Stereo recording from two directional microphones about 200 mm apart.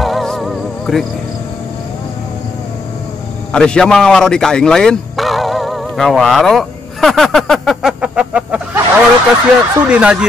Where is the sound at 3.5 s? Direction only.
5° left (ahead or behind).